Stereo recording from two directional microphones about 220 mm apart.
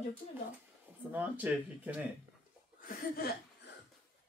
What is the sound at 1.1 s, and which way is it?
Speech, 10° right (ahead or behind).